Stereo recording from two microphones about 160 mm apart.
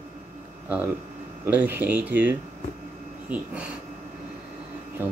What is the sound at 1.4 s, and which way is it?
Speech, 10° right (ahead or behind).